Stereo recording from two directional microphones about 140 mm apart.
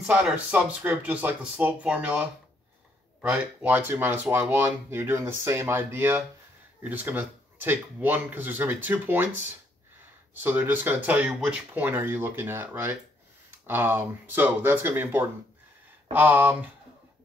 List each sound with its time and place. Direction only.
0.0 s speech: 10° right (ahead or behind)
10.4 s speech: 15° right (ahead or behind)